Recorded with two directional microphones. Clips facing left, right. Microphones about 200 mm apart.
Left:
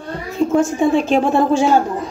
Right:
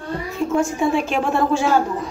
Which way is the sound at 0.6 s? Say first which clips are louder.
Left 4 dB; 20° left (ahead or behind).